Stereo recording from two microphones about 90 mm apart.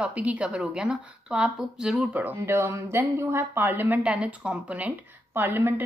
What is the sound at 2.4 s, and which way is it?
A woman's voice, 25° right (ahead or behind).